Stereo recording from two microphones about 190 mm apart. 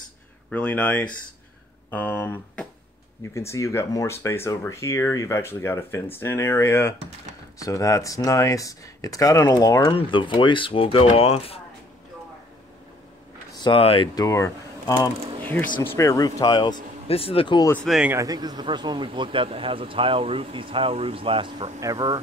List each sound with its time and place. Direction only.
0.5 s speech: 5° left (ahead or behind); by 11.6 s 30° left (ahead or behind)
13.6 s speech: 25° left (ahead or behind)
17.8 s a man's voice: centre (ahead or behind)
18.1 s a man's voice: 20° right (ahead or behind)